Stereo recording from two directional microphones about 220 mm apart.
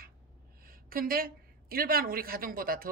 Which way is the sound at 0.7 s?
40° right (ahead or behind).